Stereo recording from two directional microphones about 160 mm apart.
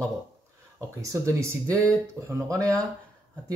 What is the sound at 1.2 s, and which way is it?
Speech, 20° right (ahead or behind).